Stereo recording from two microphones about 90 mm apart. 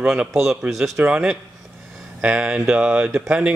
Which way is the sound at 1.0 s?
15° right (ahead or behind).